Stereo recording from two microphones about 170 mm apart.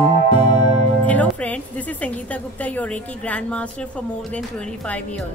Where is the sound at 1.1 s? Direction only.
10° left (ahead or behind).